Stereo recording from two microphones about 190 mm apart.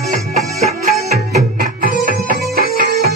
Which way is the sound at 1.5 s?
50° right (ahead or behind).